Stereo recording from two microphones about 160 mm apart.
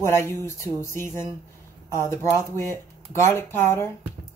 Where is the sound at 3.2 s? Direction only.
15° left (ahead or behind).